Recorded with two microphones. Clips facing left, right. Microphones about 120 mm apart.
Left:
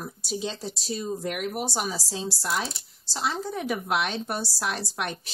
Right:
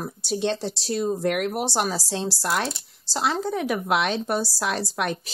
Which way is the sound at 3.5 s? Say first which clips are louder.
Right 4 dB; 90° right.